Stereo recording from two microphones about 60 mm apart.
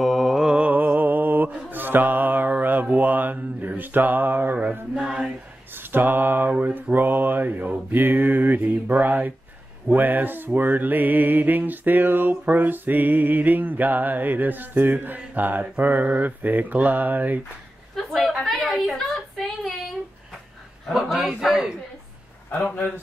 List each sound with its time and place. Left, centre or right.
0.0 s mantra: centre
0.6 s music: right
1.7 s mantra: right
4.9 s a man's voice: centre
5.8 s a sound: right
15.8 s speech: right
18.2 s a sound: centre
20.9 s a man's voice: centre